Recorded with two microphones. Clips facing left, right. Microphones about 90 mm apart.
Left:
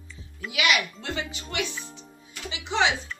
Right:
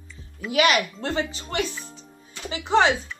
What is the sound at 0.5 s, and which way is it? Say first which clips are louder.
Speech: right 5 dB; 40° right (ahead or behind).